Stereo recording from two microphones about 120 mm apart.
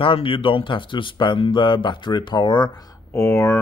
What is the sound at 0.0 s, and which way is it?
Speech, 50° left (ahead or behind).